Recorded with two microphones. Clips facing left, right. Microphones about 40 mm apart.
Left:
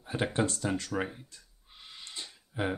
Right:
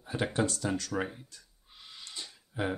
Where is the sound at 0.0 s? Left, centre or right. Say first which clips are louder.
Even; centre.